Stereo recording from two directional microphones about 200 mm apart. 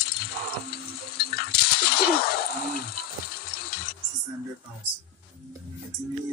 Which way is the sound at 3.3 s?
50° left (ahead or behind).